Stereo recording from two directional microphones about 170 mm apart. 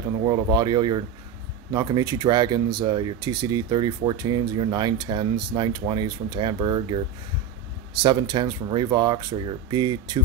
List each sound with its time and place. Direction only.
0.2 s speech: 25° right (ahead or behind)
8.0 s speech: 25° right (ahead or behind)